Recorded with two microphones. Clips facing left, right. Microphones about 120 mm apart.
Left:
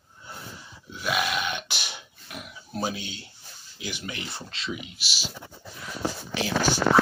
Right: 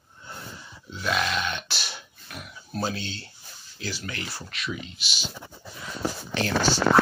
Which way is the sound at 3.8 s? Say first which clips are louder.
Right 1 dB; 20° left (ahead or behind).